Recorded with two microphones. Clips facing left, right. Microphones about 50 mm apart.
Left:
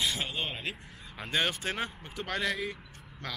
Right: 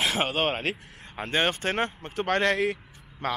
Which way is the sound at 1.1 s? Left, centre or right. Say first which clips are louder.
Right 5 dB; right.